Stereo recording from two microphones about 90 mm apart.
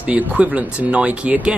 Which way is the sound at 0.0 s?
15° right (ahead or behind).